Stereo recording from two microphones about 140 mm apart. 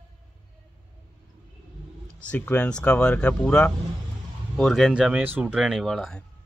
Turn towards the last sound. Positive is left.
turn(degrees=0)  # may be behind; listen again after turning